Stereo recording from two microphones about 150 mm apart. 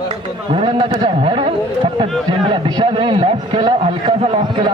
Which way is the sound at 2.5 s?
35° right (ahead or behind).